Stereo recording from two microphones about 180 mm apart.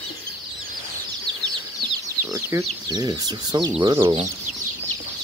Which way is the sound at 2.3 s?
15° right (ahead or behind).